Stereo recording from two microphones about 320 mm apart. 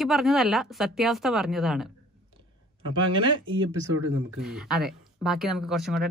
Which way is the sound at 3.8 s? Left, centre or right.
Right.